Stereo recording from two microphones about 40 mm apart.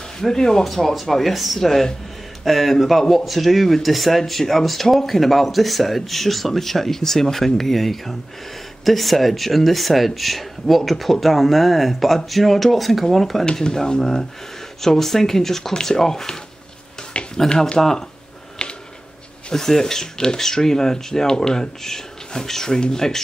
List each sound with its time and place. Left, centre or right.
0.2 s speech: centre
0.7 s speech: centre
13.5 s speech: centre
17.1 s a sound: left
17.5 s speech: left
17.7 s speech: centre
18.6 s a sound: left
19.5 s speech: centre